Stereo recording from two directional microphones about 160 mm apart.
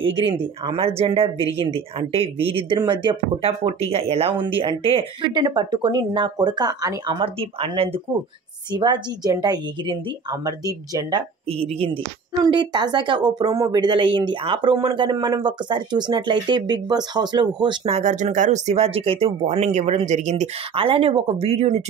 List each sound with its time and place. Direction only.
0.1 s speech: 30° right (ahead or behind)
17.8 s speech: 45° right (ahead or behind)